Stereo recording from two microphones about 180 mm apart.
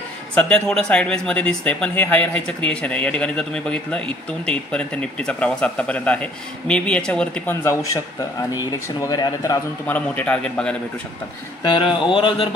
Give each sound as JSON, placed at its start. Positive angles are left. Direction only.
{"t": 0.3, "sound": "a man's voice", "side_deg": 5}
{"t": 11.6, "sound": "speech", "side_deg": 25}